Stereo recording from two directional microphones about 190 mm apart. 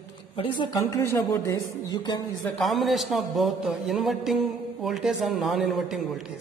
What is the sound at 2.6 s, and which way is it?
A man's voice, centre (ahead or behind).